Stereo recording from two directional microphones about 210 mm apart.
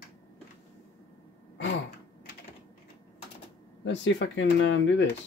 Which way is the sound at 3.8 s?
60° left (ahead or behind).